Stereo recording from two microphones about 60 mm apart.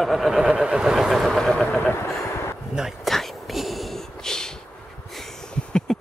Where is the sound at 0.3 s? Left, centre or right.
Centre.